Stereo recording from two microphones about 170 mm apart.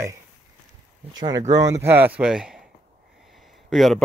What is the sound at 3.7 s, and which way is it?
Speech, centre (ahead or behind).